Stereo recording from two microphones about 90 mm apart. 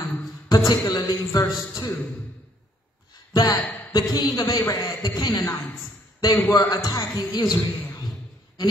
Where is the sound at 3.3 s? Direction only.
50° left (ahead or behind).